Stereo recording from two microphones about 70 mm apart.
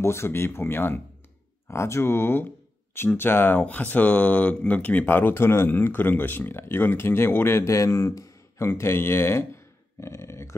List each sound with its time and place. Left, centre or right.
0.0 s speech: left
1.7 s speech: left
8.1 s a sound: left
8.6 s speech: left